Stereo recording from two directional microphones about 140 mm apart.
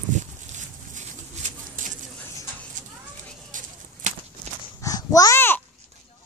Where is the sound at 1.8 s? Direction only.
70° right (ahead or behind).